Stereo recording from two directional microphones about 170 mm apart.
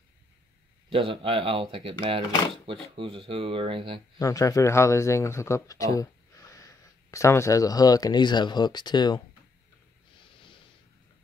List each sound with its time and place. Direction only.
0.8 s speech: 30° right (ahead or behind)
4.2 s speech: 20° left (ahead or behind)